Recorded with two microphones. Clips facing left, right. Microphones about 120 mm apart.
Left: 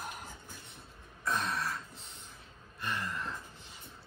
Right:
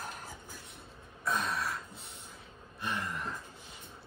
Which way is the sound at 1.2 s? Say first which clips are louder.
Right 1 dB; centre (ahead or behind).